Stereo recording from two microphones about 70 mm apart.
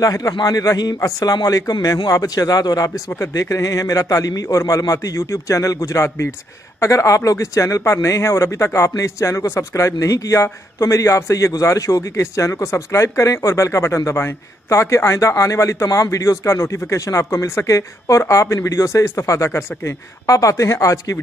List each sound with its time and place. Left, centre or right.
0.0 s a man's voice: left
0.3 s a man's voice: left
1.3 s a man's voice: left
5.9 s speech: left